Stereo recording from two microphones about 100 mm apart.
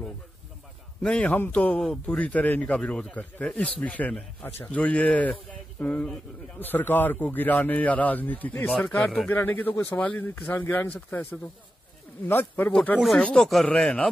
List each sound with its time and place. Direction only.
1.0 s speech: 10° left (ahead or behind)
12.3 s speech: 20° left (ahead or behind)
13.2 s speech: 5° left (ahead or behind)